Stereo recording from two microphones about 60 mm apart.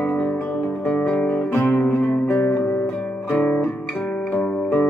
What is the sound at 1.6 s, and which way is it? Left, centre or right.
Music, left.